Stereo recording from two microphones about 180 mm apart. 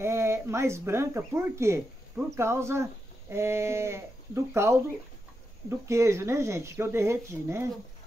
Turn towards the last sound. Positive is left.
turn(degrees=-15)  # may be behind; listen again after turning